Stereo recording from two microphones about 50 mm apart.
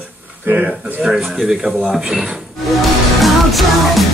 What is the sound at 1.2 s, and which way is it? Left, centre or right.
Speech, centre.